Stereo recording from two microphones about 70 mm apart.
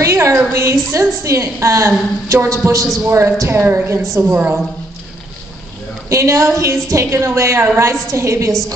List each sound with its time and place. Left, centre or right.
0.0 s a sound: right
0.5 s a woman's voice: right
4.2 s a woman's voice: right
6.0 s a woman's voice: right